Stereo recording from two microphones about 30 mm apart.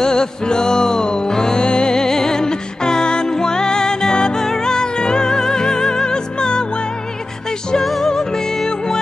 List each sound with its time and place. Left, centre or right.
0.0 s music: left
7.8 s music: centre
8.1 s music: centre